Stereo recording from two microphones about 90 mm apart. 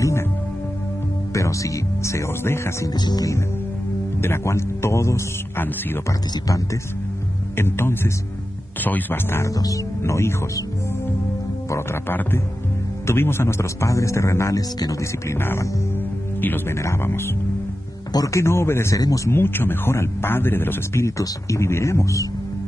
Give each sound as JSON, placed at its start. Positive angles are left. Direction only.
{"t": 1.3, "sound": "speech", "side_deg": 35}
{"t": 2.9, "sound": "music", "side_deg": 45}
{"t": 4.2, "sound": "speech", "side_deg": 30}
{"t": 6.3, "sound": "speech", "side_deg": 40}
{"t": 7.5, "sound": "speech", "side_deg": 25}
{"t": 9.5, "sound": "speech", "side_deg": 40}
{"t": 11.7, "sound": "speech", "side_deg": 25}
{"t": 15.3, "sound": "speech", "side_deg": 25}
{"t": 18.1, "sound": "speech", "side_deg": 35}
{"t": 18.9, "sound": "speech", "side_deg": 40}